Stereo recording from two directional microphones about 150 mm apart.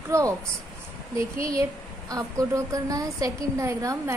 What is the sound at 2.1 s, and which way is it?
A woman's voice, 20° right (ahead or behind).